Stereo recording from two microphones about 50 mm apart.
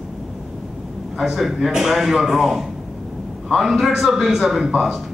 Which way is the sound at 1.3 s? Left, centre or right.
Centre.